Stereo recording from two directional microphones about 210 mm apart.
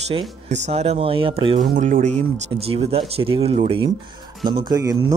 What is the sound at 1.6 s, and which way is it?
Speech, 40° right (ahead or behind).